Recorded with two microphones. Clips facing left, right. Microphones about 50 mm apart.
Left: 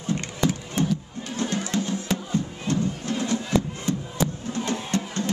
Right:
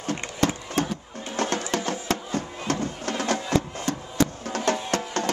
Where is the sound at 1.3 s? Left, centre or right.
Right.